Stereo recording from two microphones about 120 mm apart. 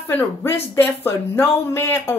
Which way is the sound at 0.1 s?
20° left (ahead or behind).